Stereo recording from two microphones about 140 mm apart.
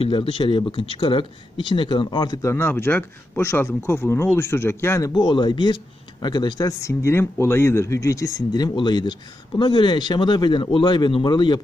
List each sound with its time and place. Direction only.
0.0 s speech: 40° left (ahead or behind); by 5.1 s 20° left (ahead or behind)
5.1 s speech: 35° left (ahead or behind)